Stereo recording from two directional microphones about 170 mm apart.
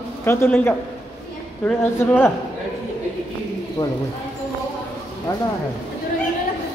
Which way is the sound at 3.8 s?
15° left (ahead or behind).